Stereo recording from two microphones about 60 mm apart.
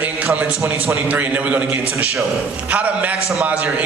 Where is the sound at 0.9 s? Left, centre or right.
Right.